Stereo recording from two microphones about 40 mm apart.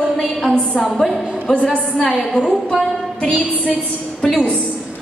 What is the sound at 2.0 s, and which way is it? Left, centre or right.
Speech, centre.